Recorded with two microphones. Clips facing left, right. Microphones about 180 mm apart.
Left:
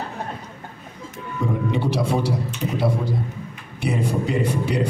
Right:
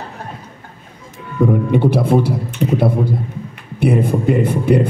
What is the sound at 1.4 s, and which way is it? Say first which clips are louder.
Speech: right 9 dB; 55° right (ahead or behind).